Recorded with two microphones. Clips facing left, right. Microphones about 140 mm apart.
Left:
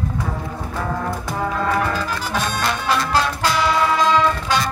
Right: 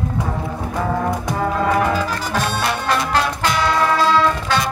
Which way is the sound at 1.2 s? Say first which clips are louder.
Right 3 dB; centre (ahead or behind).